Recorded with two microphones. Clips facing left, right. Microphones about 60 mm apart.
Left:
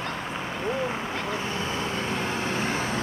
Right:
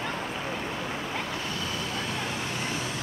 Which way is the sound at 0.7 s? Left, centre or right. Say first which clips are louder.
Left 4 dB; left.